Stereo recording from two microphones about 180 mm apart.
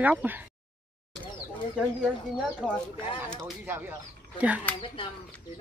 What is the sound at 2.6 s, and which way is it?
Speech, centre (ahead or behind).